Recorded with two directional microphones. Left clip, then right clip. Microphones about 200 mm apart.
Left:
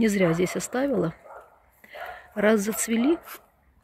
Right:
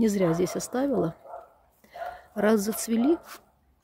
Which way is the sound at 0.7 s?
Centre (ahead or behind).